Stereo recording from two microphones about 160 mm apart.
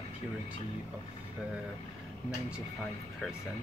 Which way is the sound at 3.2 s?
Centre (ahead or behind).